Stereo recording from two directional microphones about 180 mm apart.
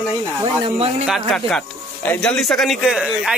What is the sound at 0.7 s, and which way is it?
Speech, 35° right (ahead or behind).